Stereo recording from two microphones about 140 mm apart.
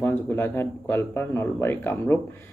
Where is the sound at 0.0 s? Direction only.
15° left (ahead or behind).